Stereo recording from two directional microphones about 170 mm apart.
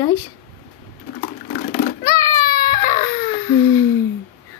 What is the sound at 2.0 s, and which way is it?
Baby cry, 20° left (ahead or behind).